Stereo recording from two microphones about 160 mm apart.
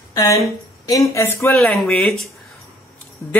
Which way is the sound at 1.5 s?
Centre (ahead or behind).